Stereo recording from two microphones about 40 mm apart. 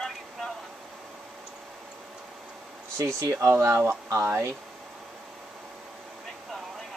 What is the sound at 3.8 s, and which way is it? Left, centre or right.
Speech, right.